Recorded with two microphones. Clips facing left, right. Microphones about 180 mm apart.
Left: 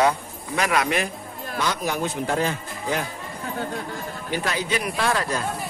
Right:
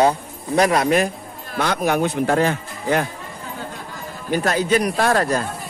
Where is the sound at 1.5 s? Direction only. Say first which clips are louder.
Right 6 dB; 60° right (ahead or behind).